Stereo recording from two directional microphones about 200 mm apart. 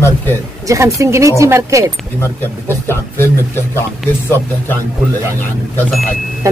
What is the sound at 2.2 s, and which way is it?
Speech, 10° left (ahead or behind).